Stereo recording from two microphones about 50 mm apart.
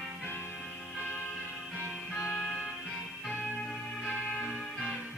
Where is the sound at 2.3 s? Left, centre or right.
Centre.